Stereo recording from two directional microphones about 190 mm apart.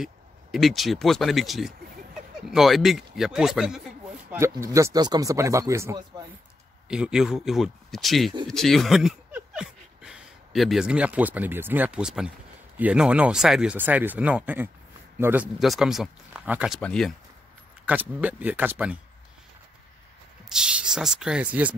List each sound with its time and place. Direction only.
0.0 s speech: centre (ahead or behind)
4.3 s speech: 15° right (ahead or behind)
6.9 s speech: 5° right (ahead or behind)
17.8 s speech: 10° right (ahead or behind)
20.4 s speech: 5° right (ahead or behind)